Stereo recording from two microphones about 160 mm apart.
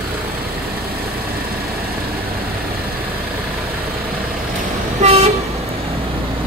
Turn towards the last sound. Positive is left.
turn(degrees=-40)  # may be behind; listen again after turning